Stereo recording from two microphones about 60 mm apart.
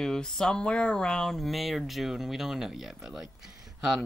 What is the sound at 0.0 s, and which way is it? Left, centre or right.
Speech, centre.